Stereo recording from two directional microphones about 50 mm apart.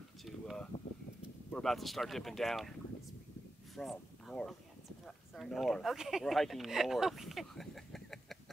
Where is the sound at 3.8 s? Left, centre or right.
Centre.